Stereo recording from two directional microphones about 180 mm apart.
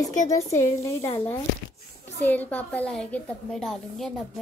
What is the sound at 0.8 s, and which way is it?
A woman's voice, 15° left (ahead or behind).